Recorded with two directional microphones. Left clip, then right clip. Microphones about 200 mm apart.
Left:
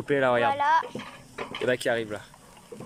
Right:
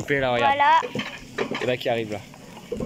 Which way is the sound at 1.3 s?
55° right (ahead or behind).